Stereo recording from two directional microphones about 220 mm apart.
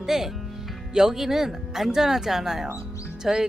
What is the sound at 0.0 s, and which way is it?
Speech, centre (ahead or behind).